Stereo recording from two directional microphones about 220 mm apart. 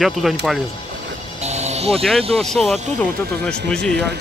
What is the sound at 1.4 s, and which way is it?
Music, 30° right (ahead or behind).